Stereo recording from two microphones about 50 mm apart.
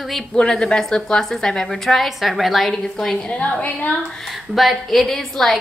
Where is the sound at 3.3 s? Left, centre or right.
Left.